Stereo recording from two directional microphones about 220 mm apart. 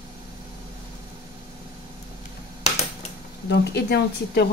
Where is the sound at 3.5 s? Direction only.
50° left (ahead or behind).